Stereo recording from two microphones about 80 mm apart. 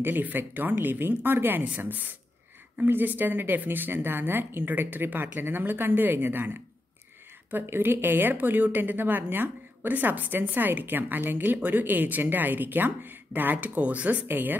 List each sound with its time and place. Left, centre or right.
0.0 s a woman's voice: right